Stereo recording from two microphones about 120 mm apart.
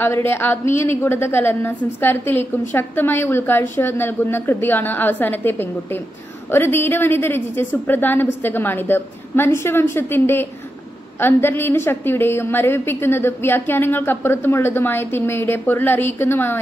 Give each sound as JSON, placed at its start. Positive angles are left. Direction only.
{"t": 0.0, "sound": "a woman's voice", "side_deg": 20}